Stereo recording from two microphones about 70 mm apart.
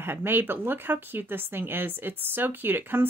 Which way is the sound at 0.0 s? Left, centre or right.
Right.